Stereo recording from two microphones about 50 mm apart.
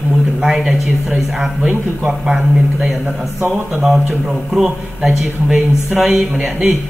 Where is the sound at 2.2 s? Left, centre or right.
Centre.